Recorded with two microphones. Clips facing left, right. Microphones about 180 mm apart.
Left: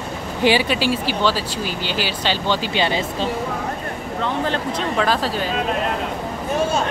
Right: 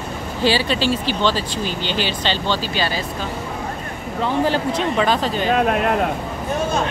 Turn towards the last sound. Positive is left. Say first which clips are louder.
# right 1 dB
turn(degrees=5)  # may be behind; listen again after turning